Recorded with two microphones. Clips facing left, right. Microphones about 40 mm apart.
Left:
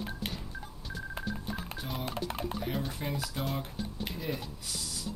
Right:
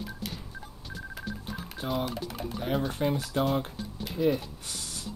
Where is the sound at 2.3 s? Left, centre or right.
Left.